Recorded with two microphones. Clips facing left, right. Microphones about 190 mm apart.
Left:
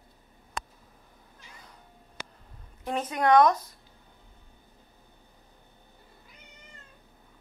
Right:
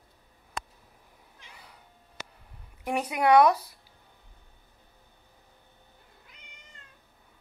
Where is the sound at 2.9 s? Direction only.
10° right (ahead or behind).